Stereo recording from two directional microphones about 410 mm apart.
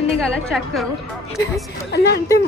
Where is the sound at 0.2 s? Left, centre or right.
Centre.